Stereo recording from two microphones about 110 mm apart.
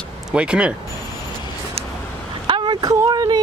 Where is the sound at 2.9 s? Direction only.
30° right (ahead or behind).